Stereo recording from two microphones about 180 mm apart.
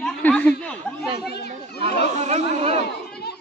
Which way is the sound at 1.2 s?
65° left (ahead or behind).